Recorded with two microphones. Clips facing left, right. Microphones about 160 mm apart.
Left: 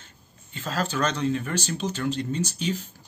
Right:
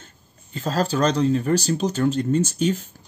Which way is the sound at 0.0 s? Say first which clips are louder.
Right 3 dB; 40° right (ahead or behind).